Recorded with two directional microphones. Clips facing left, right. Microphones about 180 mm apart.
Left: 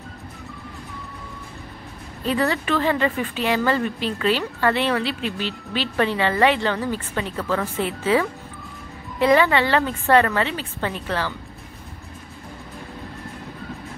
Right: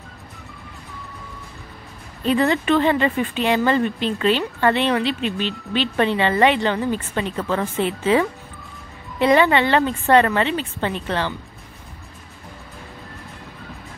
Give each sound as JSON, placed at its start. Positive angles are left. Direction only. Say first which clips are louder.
{"t": 2.2, "sound": "a woman's voice", "louder": "right 4 dB", "side_deg": -20}